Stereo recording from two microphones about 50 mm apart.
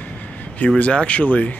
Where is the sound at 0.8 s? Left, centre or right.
Left.